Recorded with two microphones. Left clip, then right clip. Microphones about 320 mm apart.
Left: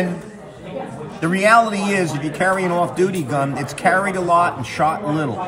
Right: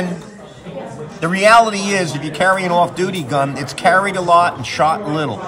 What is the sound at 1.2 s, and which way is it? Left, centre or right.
A man's voice, centre.